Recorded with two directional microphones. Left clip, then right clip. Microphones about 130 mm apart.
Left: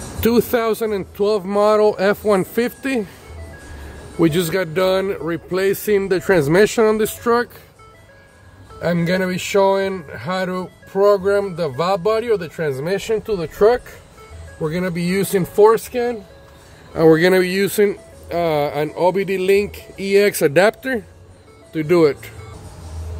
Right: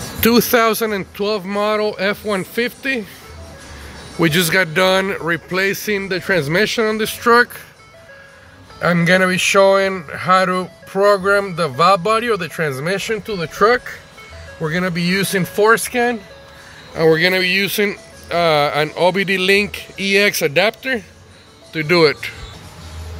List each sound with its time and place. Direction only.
0.2 s speech: 15° left (ahead or behind)
1.1 s speech: 30° left (ahead or behind)
1.5 s speech: 50° left (ahead or behind)
4.2 s speech: 20° left (ahead or behind)
5.5 s speech: 30° left (ahead or behind)
5.9 s speech: 45° left (ahead or behind)
7.2 s speech: 30° left (ahead or behind)
8.8 s speech: 5° left (ahead or behind); by 15.7 s 25° left (ahead or behind)
15.9 s speech: 5° right (ahead or behind)
16.9 s speech: 55° left (ahead or behind)
17.2 s speech: 75° left (ahead or behind)
17.8 s speech: 20° left (ahead or behind)
20.2 s speech: 60° left (ahead or behind)
21.7 s speech: 30° left (ahead or behind)